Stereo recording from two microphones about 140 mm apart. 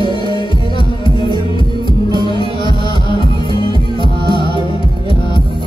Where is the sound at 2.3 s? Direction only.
35° left (ahead or behind).